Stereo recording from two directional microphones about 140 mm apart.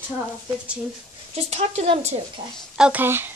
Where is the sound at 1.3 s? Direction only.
45° right (ahead or behind).